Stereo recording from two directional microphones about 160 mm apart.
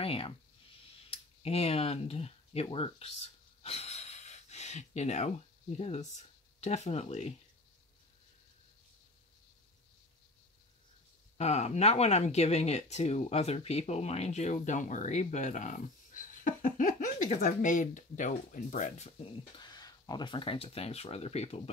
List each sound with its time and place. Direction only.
0.0 s speech: 35° left (ahead or behind)
1.4 s speech: 40° left (ahead or behind)
11.3 s speech: 45° left (ahead or behind)
19.6 s speech: 25° left (ahead or behind)